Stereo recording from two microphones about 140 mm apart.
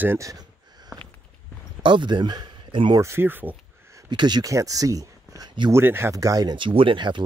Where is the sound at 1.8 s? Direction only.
35° right (ahead or behind).